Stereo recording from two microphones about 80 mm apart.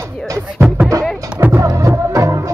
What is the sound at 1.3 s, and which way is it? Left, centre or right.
Music, centre.